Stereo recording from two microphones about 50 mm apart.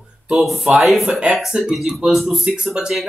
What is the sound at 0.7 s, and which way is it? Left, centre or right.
Speech, centre.